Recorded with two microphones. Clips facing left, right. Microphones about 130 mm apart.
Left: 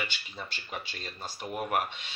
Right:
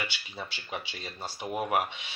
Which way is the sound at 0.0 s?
10° right (ahead or behind).